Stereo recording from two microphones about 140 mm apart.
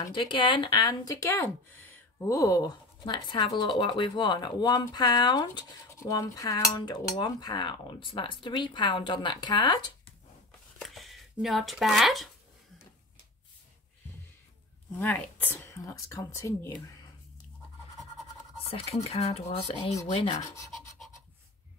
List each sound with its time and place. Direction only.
0.1 s speech: 35° left (ahead or behind)
5.9 s cutlery: 25° left (ahead or behind)
10.8 s speech: centre (ahead or behind)
15.0 s speech: 10° left (ahead or behind)
18.7 s speech: 45° left (ahead or behind)
20.2 s speech: 30° left (ahead or behind)